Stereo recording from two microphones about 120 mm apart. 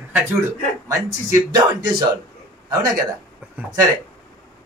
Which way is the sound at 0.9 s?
25° right (ahead or behind).